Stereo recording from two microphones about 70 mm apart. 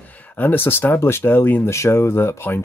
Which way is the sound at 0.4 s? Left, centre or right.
Left.